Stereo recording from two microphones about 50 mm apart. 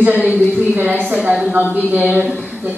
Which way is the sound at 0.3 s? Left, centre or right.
Right.